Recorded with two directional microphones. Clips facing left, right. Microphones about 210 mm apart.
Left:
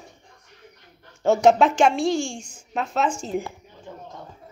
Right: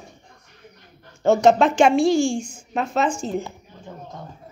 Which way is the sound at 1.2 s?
10° left (ahead or behind).